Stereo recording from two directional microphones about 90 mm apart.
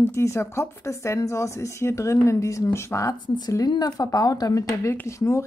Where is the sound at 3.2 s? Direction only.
55° left (ahead or behind); by 5.4 s 30° left (ahead or behind).